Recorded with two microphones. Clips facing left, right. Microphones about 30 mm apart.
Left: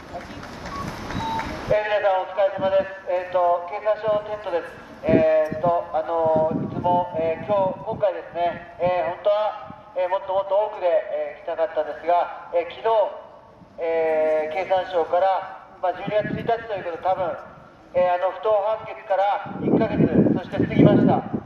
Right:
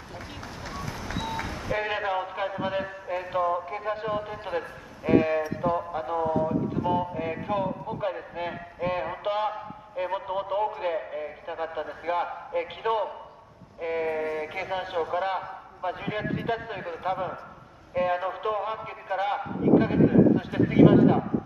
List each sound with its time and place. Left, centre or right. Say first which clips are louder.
1.1 s vehicle: left 6 dB; centre
1.7 s a man's voice: left 8 dB; centre
6.8 s a man's voice: left 10 dB; centre